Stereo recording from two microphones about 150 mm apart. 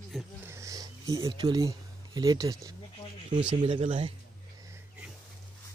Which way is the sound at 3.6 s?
35° right (ahead or behind).